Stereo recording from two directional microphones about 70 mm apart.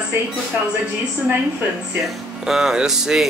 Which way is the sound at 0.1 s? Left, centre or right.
Right.